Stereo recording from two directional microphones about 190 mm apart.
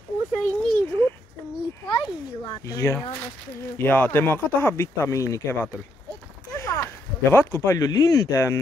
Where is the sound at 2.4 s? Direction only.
20° left (ahead or behind).